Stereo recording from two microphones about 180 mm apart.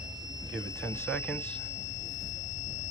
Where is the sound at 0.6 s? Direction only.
5° left (ahead or behind).